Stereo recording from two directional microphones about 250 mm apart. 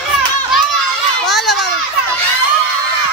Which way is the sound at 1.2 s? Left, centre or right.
Left.